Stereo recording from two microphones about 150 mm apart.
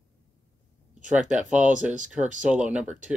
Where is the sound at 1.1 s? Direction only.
10° right (ahead or behind).